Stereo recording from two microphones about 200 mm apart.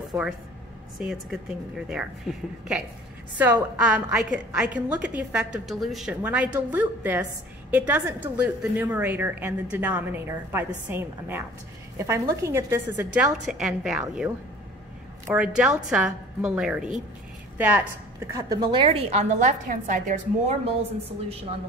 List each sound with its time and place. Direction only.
0.9 s a woman's voice: centre (ahead or behind)
15.3 s a woman's voice: 5° right (ahead or behind)
18.3 s a woman's voice: 20° right (ahead or behind)